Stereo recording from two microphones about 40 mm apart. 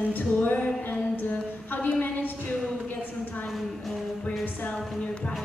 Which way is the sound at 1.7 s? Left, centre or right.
Left.